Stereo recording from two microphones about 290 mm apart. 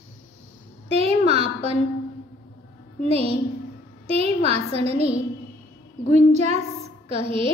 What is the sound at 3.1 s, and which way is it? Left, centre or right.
A child's voice, right.